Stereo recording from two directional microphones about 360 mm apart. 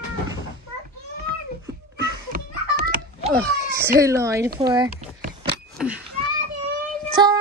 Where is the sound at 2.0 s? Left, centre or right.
Right.